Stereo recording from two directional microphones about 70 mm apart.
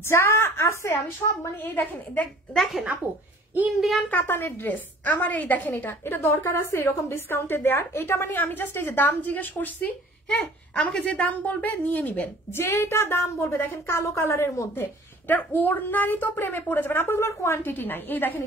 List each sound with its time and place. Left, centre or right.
0.0 s a woman's voice: left
1.6 s a woman's voice: left
2.5 s speech: centre
4.1 s a woman's voice: left
10.2 s babbling: centre
11.1 s a woman's voice: left
13.6 s a woman's voice: left
15.2 s a woman's voice: left